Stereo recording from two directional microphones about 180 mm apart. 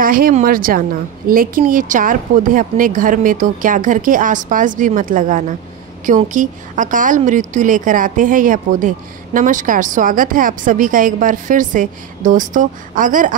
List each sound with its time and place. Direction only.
0.0 s a woman's voice: 50° right (ahead or behind)